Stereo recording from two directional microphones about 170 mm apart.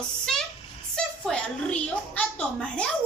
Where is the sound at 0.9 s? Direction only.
5° left (ahead or behind).